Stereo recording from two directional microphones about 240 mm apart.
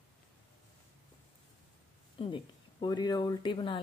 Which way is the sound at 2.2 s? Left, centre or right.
Left.